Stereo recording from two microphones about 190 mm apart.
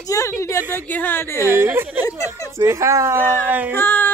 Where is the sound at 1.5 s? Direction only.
10° right (ahead or behind).